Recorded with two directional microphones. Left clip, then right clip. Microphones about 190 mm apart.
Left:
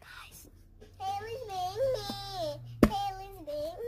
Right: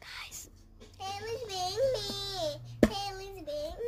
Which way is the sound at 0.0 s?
20° right (ahead or behind).